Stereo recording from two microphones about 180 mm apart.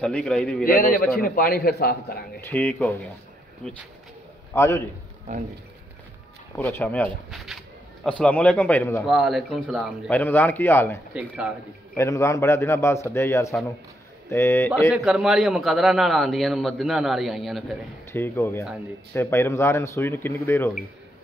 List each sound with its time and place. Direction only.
0.0 s a man's voice: 5° left (ahead or behind)
0.7 s a man's voice: 55° left (ahead or behind)
2.4 s a man's voice: 15° left (ahead or behind)
6.5 s a man's voice: 10° left (ahead or behind)
9.0 s a man's voice: centre (ahead or behind)
10.1 s a man's voice: 10° left (ahead or behind)
11.1 s speech: 5° right (ahead or behind)
12.0 s a man's voice: 15° left (ahead or behind)
14.9 s a man's voice: 5° right (ahead or behind)
18.1 s a man's voice: 15° left (ahead or behind)